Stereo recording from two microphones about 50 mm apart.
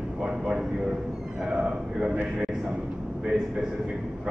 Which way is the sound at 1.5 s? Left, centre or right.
Right.